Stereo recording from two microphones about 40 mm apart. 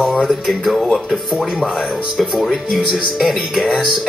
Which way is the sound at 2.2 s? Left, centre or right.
Centre.